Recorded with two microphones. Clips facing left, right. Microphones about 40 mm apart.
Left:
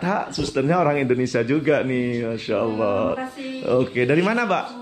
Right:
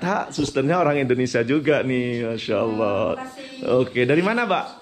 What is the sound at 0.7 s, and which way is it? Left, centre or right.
Speech, right.